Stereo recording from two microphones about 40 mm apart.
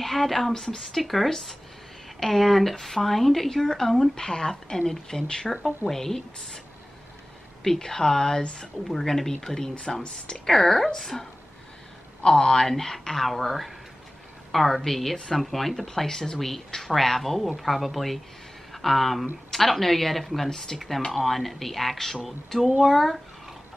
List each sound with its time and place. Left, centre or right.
0.0 s a woman's voice: centre
7.6 s a woman's voice: centre
9.0 s a woman's voice: centre
10.0 s speech: left
10.4 s a woman's voice: centre
12.2 s a woman's voice: centre